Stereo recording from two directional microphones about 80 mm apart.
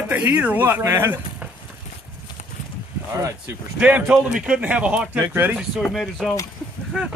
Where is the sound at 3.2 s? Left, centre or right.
Right.